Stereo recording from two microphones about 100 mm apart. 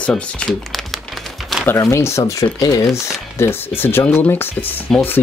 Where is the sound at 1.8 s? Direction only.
30° left (ahead or behind).